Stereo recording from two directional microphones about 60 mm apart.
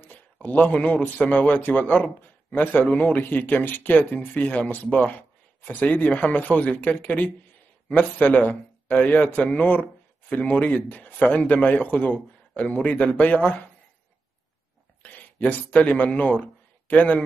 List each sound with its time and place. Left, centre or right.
0.0 s a man's voice: left
15.0 s a man's voice: left